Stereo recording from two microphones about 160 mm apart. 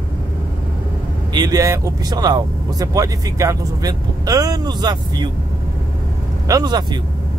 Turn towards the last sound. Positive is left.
turn(degrees=-25)  # may be behind; listen again after turning